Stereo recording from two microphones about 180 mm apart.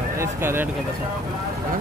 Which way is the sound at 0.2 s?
15° right (ahead or behind).